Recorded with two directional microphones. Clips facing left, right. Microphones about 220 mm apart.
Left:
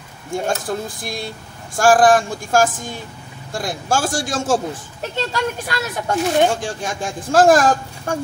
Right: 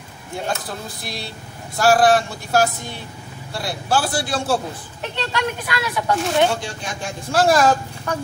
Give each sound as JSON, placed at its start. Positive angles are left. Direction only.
{"t": 0.7, "sound": "speech", "side_deg": 50}